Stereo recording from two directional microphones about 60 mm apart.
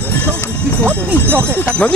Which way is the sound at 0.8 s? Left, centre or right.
Left.